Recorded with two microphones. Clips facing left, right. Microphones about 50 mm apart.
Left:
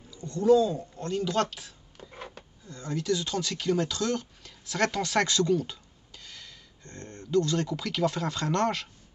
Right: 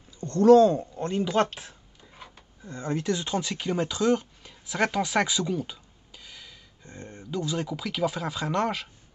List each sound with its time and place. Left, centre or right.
0.3 s speech: right
0.9 s speech: right
1.5 s speech: right
2.0 s a sound: left
2.6 s speech: right; by 8.8 s centre